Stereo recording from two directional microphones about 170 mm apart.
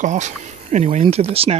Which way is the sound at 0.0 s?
45° right (ahead or behind).